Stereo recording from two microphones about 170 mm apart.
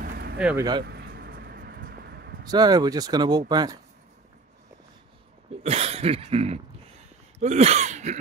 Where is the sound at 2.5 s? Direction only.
25° right (ahead or behind).